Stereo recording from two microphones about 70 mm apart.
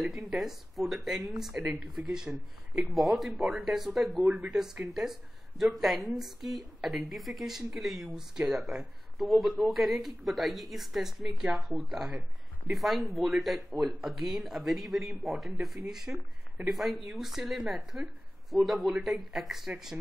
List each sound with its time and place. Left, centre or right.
0.0 s speech: centre
4.2 s speech: right
4.5 s speech: centre